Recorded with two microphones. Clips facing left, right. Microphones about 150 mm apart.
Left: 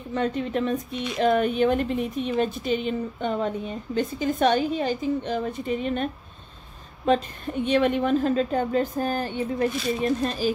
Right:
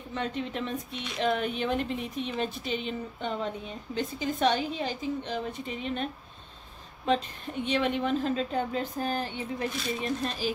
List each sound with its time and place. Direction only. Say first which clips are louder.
0.1 s speech: left 7 dB; 45° left (ahead or behind)
7.6 s speech: left 6 dB; 50° left (ahead or behind)